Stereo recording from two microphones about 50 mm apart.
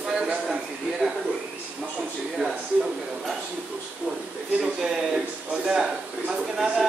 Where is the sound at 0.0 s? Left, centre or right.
Centre.